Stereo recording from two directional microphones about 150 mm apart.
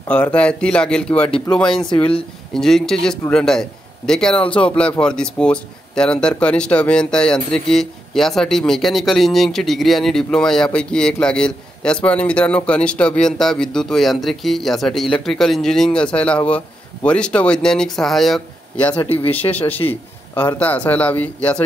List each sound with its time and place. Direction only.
0.1 s speech: 10° left (ahead or behind)
1.9 s speech: 40° left (ahead or behind)
2.5 s a man's voice: 5° left (ahead or behind)
18.9 s speech: 40° left (ahead or behind)
19.9 s speech: 10° left (ahead or behind)